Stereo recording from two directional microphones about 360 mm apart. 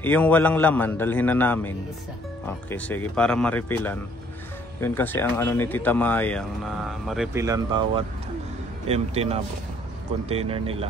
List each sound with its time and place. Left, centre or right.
0.0 s speech: centre